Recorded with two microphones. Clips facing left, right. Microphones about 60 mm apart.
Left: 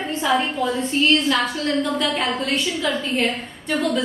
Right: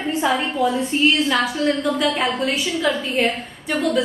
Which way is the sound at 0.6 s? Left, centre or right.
Centre.